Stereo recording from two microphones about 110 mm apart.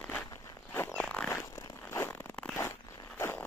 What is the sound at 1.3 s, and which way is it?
Zipper, 25° left (ahead or behind).